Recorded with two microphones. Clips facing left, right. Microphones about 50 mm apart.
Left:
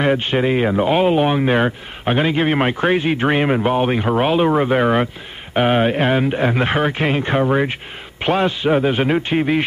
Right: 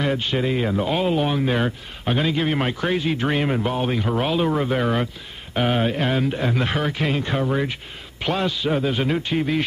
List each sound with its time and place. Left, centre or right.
0.0 s a man's voice: left